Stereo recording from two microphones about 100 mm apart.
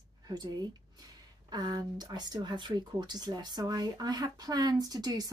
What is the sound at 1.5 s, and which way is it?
Speech, 45° right (ahead or behind).